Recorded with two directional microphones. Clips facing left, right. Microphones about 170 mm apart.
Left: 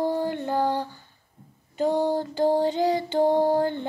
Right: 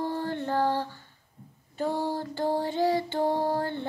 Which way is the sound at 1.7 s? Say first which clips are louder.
Left 6 dB; 20° left (ahead or behind).